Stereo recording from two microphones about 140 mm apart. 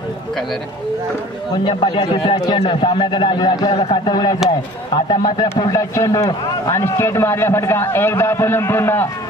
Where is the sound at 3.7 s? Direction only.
40° left (ahead or behind).